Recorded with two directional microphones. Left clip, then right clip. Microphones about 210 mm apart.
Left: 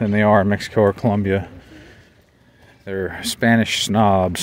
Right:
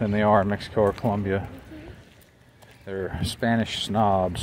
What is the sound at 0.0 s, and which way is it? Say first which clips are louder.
Speech: left 5 dB; 50° left (ahead or behind).